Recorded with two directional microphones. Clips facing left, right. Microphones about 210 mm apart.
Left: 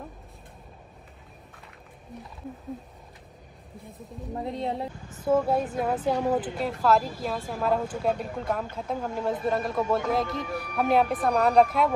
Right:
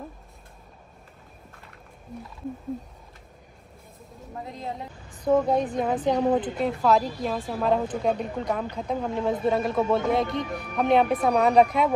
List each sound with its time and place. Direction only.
2.1 s speech: centre (ahead or behind)
4.4 s speech: 30° left (ahead or behind)
5.2 s speech: 5° left (ahead or behind)